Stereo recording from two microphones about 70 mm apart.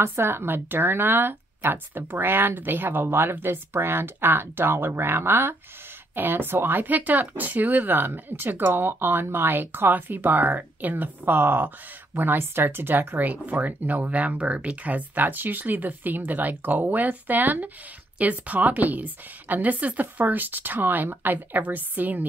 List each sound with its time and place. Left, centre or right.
0.0 s speech: right